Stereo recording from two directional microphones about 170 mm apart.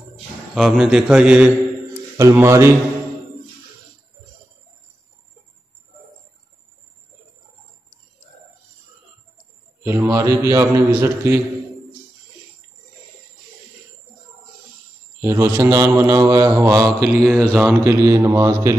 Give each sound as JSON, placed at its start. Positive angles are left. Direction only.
{"t": 0.6, "sound": "a man's voice", "side_deg": 0}
{"t": 2.1, "sound": "a man's voice", "side_deg": -15}
{"t": 9.8, "sound": "a man's voice", "side_deg": -15}
{"t": 15.2, "sound": "a man's voice", "side_deg": -15}
{"t": 17.2, "sound": "a man's voice", "side_deg": 5}
{"t": 17.6, "sound": "a man's voice", "side_deg": -15}